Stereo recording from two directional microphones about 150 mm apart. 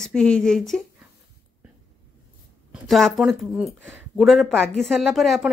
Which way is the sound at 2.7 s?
Centre (ahead or behind).